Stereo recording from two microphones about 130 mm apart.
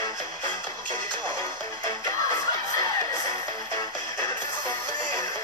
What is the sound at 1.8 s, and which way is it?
Music, 25° left (ahead or behind).